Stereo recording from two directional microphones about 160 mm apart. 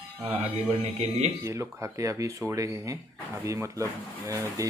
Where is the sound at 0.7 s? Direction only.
45° right (ahead or behind).